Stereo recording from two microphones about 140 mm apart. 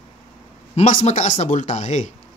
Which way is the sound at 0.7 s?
60° left (ahead or behind).